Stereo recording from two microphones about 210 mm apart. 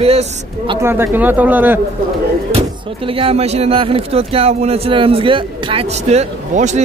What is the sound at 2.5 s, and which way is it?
Speech, 25° right (ahead or behind).